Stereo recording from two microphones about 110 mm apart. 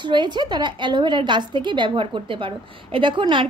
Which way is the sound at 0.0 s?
45° right (ahead or behind).